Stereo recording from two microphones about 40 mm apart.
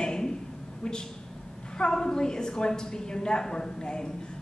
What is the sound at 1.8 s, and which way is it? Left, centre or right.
A woman's voice, centre.